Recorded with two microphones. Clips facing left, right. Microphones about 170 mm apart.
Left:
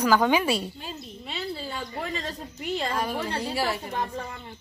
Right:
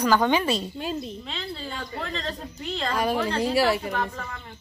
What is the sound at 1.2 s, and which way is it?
Speech, 10° left (ahead or behind).